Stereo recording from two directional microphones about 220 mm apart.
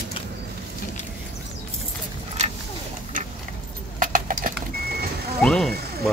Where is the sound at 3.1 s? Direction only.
35° right (ahead or behind).